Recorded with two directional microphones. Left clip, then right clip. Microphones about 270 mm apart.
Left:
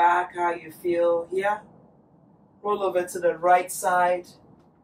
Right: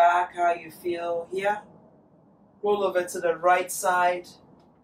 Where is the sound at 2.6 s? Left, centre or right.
Centre.